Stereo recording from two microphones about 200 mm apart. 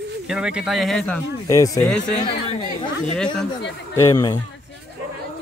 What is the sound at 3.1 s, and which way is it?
Speech, 5° left (ahead or behind).